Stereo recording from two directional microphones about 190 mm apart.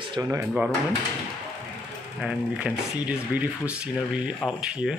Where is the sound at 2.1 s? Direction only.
5° right (ahead or behind).